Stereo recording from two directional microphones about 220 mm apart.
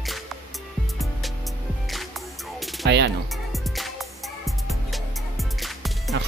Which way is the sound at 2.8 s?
50° right (ahead or behind).